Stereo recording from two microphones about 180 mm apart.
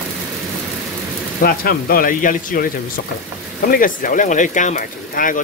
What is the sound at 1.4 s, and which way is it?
Speech, 55° left (ahead or behind).